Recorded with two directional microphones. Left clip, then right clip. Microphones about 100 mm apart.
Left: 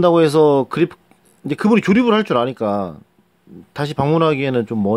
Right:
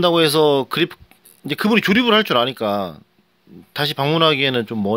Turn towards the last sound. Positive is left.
turn(degrees=25)  # may be behind; listen again after turning